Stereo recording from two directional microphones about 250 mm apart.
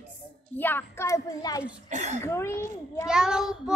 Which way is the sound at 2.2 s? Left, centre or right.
Centre.